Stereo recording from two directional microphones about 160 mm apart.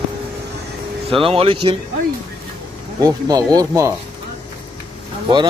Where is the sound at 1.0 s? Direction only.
35° right (ahead or behind).